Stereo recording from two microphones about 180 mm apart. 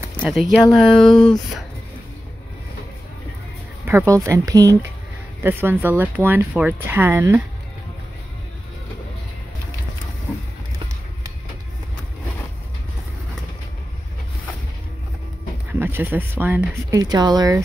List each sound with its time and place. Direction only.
0.2 s speech: centre (ahead or behind)
1.1 s speech: 25° left (ahead or behind)
3.8 s speech: 15° right (ahead or behind)
15.8 s speech: 10° right (ahead or behind)
16.9 s speech: 20° right (ahead or behind)